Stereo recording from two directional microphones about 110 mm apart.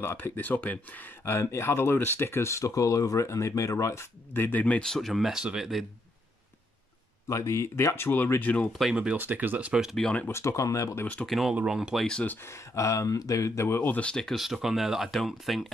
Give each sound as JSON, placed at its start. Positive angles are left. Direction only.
{"t": 0.0, "sound": "speech", "side_deg": 20}
{"t": 7.2, "sound": "speech", "side_deg": 25}
{"t": 8.9, "sound": "speech", "side_deg": -10}
{"t": 10.0, "sound": "speech", "side_deg": 10}
{"t": 10.3, "sound": "speech", "side_deg": 30}
{"t": 11.2, "sound": "speech", "side_deg": 0}
{"t": 12.4, "sound": "speech", "side_deg": 25}